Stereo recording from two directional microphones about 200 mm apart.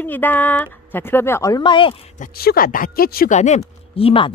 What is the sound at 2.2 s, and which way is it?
Speech, 50° left (ahead or behind).